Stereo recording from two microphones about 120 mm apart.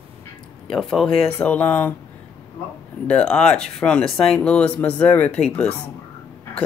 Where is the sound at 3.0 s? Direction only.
10° left (ahead or behind).